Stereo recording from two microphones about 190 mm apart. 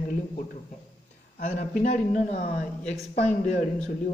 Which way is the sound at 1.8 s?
40° left (ahead or behind).